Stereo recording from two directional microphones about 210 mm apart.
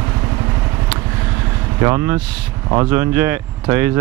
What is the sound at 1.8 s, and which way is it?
Speech, 15° right (ahead or behind).